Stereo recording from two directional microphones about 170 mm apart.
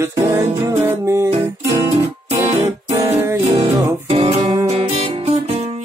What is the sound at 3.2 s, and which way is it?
Music, 15° right (ahead or behind).